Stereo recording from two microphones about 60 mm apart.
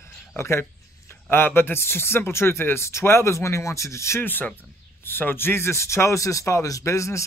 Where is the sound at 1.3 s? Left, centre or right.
Left.